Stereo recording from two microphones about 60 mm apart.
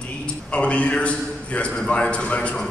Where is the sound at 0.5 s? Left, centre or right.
Left.